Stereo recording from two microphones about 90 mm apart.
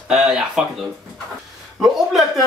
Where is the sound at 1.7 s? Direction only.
Centre (ahead or behind).